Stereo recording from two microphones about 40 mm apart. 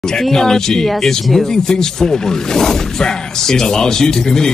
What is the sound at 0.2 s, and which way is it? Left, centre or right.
Speech, centre.